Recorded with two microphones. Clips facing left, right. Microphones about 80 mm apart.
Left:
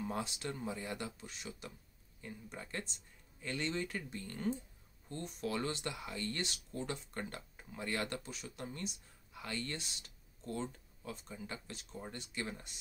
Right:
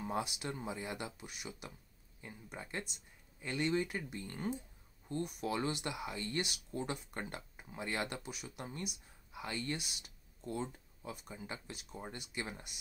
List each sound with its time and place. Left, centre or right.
0.2 s speech: centre